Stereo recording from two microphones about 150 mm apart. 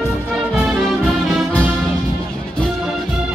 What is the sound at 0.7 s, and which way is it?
Music, centre (ahead or behind).